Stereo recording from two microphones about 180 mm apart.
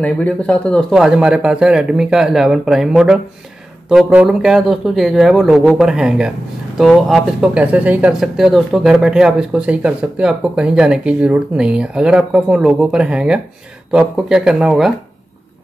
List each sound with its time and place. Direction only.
0.0 s speech: 5° left (ahead or behind)